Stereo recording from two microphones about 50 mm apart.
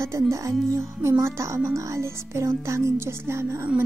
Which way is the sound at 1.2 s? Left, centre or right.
Right.